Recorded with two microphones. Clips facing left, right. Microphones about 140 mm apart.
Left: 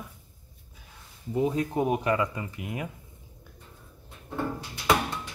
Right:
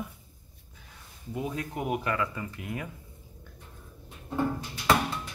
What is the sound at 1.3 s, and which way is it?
Speech, 25° left (ahead or behind).